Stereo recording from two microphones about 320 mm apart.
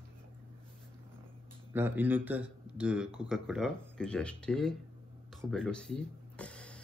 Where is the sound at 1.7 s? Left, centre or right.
Centre.